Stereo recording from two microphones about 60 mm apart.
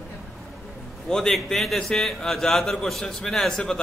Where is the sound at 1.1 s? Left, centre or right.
Centre.